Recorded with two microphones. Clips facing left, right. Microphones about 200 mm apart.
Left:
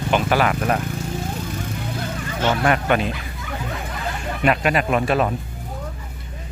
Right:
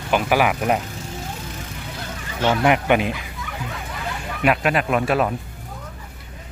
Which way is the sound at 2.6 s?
15° right (ahead or behind).